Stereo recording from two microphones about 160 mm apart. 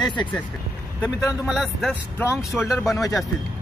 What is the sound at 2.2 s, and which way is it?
Speech, 15° left (ahead or behind).